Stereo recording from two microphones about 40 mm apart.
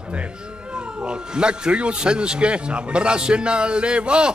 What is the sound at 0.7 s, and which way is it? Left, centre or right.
Speech, right.